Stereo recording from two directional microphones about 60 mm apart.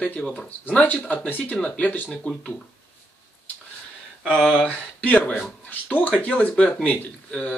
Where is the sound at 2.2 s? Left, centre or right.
Left.